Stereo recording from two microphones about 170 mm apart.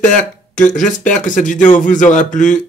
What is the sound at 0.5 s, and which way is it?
Speech, 50° left (ahead or behind).